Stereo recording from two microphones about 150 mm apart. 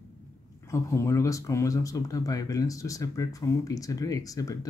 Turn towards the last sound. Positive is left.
turn(degrees=25)  # may be behind; listen again after turning